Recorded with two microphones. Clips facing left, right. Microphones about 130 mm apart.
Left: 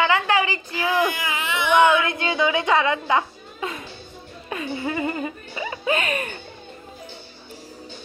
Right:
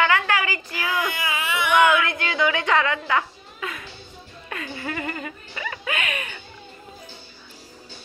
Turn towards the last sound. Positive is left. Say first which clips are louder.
# left 6 dB
turn(degrees=35)  # may be behind; listen again after turning